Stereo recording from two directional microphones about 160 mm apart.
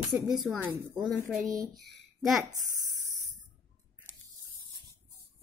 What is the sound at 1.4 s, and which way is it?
Speech, 20° right (ahead or behind).